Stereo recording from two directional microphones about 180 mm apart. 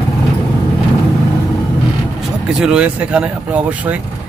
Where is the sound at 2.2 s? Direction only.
5° right (ahead or behind).